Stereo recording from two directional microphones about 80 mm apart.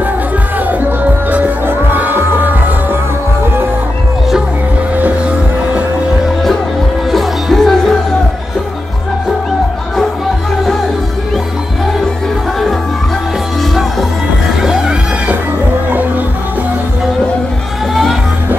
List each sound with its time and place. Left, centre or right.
1.3 s music: right
7.1 s music: centre
14.6 s music: centre